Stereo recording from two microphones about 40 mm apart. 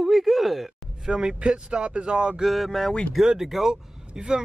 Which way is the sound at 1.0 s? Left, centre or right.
Centre.